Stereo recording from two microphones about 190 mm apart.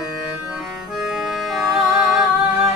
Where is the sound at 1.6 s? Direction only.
Centre (ahead or behind).